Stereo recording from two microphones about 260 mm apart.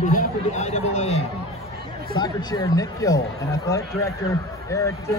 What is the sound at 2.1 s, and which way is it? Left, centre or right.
Speech, centre.